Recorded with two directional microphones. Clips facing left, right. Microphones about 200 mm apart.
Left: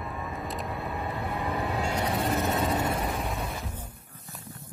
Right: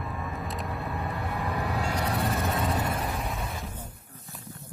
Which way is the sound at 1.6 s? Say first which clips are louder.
Left 1 dB; 20° left (ahead or behind).